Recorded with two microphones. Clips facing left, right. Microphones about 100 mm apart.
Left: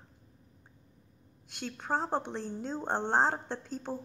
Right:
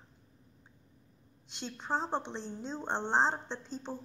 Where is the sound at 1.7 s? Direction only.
5° left (ahead or behind).